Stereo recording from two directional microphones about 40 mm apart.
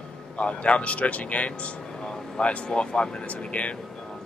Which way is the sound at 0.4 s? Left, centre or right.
Left.